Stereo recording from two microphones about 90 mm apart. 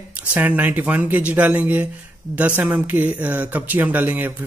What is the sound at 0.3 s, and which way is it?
Speech, 20° right (ahead or behind).